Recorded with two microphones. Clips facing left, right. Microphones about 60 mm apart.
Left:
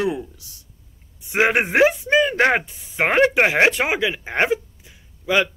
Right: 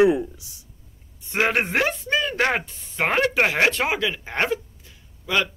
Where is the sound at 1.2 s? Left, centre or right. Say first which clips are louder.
Left 3 dB; centre.